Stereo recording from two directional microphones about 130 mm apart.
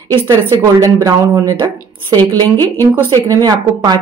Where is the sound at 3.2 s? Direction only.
30° right (ahead or behind).